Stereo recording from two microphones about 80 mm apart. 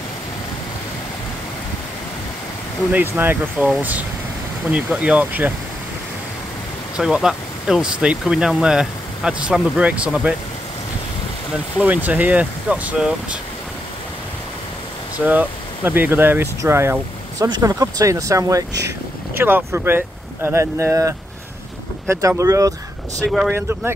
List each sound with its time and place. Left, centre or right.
2.9 s speech: right
7.0 s speech: centre
11.8 s speech: centre
15.1 s speech: right
17.6 s speech: right
19.3 s speech: right
23.5 s speech: right